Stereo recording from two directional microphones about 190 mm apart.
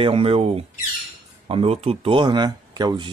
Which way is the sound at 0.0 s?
30° right (ahead or behind).